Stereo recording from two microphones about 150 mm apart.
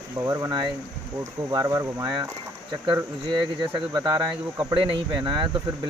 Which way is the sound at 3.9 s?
25° right (ahead or behind).